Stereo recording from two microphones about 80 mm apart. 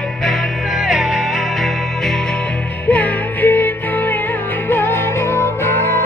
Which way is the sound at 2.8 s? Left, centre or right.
Centre.